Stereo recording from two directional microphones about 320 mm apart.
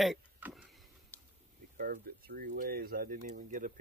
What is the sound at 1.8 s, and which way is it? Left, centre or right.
Speech, right.